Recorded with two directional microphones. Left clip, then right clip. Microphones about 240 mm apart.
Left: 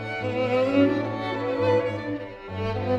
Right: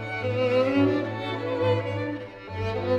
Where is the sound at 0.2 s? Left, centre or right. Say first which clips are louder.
Right 1 dB; right.